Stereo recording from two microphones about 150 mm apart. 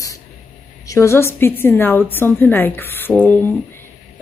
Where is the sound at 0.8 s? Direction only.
20° left (ahead or behind).